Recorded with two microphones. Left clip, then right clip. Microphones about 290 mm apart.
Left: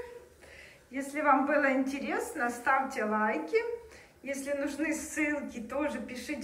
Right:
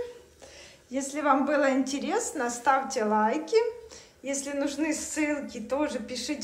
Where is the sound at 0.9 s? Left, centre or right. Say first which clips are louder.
Right 2 dB; centre.